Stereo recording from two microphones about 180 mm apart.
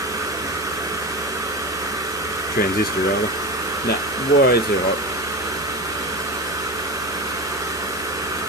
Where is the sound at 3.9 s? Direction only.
20° right (ahead or behind).